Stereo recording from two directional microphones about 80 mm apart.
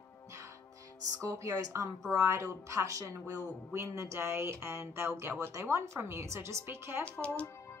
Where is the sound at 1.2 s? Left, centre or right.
Right.